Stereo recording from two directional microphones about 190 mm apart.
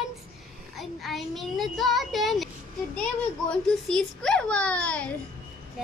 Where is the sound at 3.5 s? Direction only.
5° left (ahead or behind).